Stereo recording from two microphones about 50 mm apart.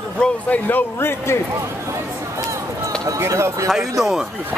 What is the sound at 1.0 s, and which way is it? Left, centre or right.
Speech, left.